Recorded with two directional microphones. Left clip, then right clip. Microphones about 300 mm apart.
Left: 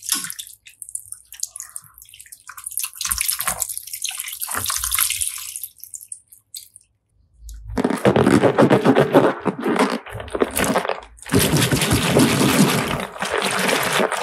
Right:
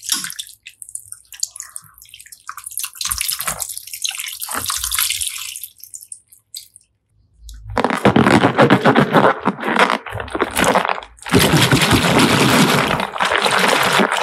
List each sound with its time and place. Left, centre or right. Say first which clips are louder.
1.6 s drip: right 3 dB; centre
3.0 s bathtub: right 2 dB; centre
7.6 s a sound: right 3 dB; centre